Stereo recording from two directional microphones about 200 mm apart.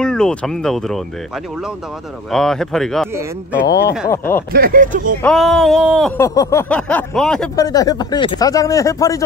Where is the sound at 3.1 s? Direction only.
15° right (ahead or behind).